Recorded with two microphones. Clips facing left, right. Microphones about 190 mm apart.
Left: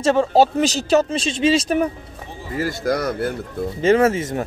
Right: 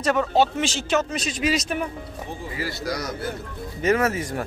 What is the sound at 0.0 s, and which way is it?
Speech, 30° left (ahead or behind).